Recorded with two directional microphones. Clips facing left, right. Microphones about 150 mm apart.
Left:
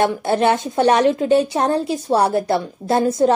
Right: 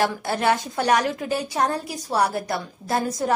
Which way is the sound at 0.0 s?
25° left (ahead or behind).